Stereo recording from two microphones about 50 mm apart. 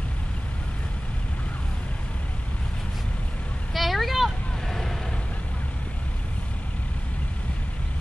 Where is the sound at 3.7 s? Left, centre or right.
Centre.